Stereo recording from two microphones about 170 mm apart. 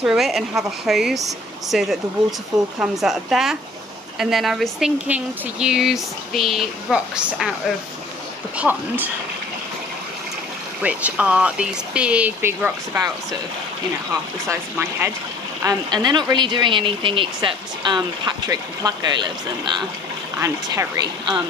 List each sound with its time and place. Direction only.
0.0 s speech: centre (ahead or behind)
8.5 s speech: 10° right (ahead or behind)
10.8 s speech: 10° right (ahead or behind)
14.5 s speech: 15° right (ahead or behind)
15.6 s speech: 25° right (ahead or behind)